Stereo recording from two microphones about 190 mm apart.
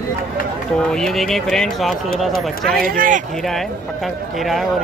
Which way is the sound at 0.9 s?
Centre (ahead or behind).